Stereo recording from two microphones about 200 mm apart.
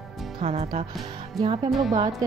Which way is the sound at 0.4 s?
35° right (ahead or behind).